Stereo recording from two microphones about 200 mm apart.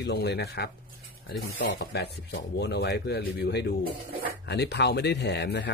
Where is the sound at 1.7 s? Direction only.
55° left (ahead or behind).